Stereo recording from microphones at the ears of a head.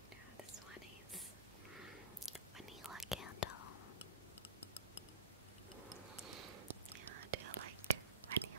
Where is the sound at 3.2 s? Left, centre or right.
Left.